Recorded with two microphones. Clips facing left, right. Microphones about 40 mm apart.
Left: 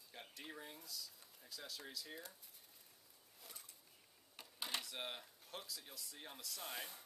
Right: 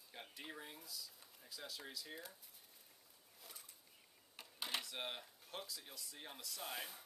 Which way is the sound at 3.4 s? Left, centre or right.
Centre.